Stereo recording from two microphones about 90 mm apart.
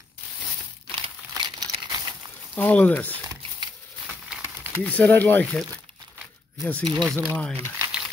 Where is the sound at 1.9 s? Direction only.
50° right (ahead or behind).